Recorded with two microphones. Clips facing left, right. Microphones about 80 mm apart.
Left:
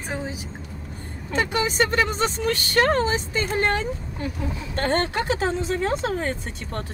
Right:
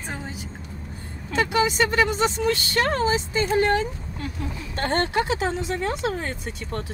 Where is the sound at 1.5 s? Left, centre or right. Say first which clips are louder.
Right 1 dB; left.